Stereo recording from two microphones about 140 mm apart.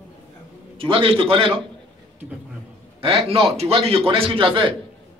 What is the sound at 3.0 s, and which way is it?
A man's voice, 40° right (ahead or behind).